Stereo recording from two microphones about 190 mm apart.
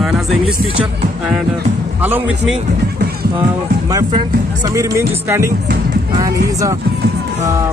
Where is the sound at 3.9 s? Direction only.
20° right (ahead or behind).